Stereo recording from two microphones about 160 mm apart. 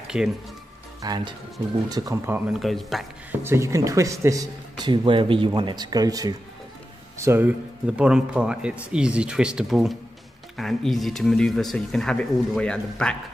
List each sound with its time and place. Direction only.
0.1 s speech: 5° right (ahead or behind)
1.0 s a man's voice: 25° right (ahead or behind); by 3.1 s centre (ahead or behind)
3.3 s a man's voice: 15° right (ahead or behind); by 13.1 s 5° left (ahead or behind)